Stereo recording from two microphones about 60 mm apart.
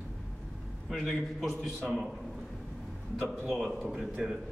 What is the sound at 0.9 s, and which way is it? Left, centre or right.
Speech, centre.